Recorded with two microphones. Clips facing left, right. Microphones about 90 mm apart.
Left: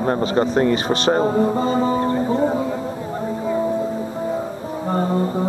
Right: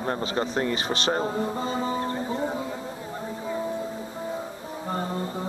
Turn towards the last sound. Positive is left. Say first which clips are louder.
# left 9 dB
turn(degrees=40)  # may be behind; listen again after turning